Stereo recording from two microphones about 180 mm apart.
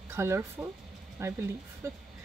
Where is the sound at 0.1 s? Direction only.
15° right (ahead or behind).